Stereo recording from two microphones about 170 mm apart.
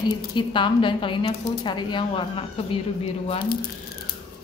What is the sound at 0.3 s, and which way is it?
Speech, 30° left (ahead or behind).